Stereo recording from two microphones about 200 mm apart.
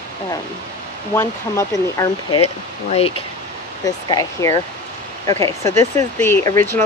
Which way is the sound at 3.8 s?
15° left (ahead or behind).